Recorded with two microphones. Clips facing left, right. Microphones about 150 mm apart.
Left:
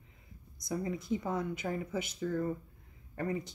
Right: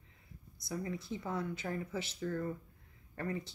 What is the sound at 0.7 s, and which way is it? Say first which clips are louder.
Speech: left 5 dB; 20° left (ahead or behind).